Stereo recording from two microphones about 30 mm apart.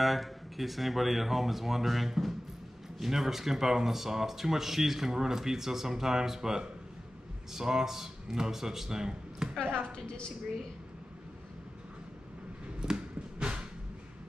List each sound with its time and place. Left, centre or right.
0.0 s a man's voice: centre; by 9.5 s right
9.9 s a woman's voice: left
12.8 s a sound: right